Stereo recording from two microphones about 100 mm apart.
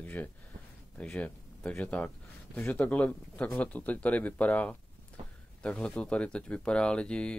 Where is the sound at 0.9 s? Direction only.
10° left (ahead or behind).